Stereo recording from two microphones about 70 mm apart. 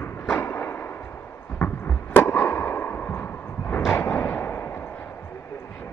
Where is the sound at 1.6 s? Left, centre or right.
Left.